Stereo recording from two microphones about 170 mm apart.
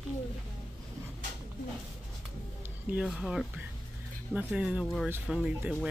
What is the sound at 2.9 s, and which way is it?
Speech, 5° right (ahead or behind).